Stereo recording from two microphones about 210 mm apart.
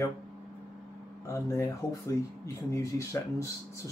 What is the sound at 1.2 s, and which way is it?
Speech, 15° left (ahead or behind).